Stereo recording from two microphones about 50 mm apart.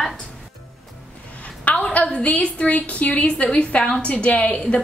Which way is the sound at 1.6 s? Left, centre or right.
Left.